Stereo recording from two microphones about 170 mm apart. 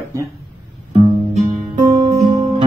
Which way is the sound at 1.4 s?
25° right (ahead or behind).